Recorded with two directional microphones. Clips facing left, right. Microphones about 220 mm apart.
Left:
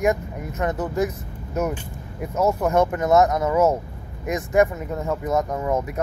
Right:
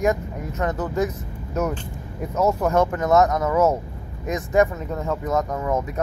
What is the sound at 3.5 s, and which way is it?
Speech, 10° left (ahead or behind).